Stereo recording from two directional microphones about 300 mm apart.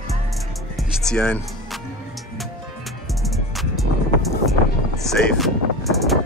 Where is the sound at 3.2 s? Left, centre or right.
Centre.